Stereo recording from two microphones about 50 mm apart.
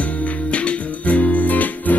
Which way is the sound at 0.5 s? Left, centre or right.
Left.